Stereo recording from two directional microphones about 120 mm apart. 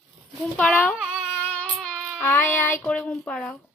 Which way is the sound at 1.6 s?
10° right (ahead or behind).